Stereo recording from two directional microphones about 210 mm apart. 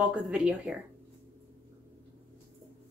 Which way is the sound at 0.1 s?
5° right (ahead or behind).